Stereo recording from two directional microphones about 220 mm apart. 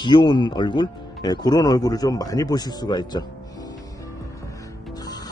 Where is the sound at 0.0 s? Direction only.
20° left (ahead or behind).